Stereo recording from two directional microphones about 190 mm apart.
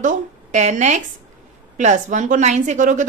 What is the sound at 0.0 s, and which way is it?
A woman's voice, 40° right (ahead or behind).